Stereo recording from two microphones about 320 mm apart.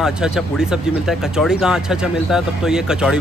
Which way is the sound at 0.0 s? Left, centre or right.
Centre.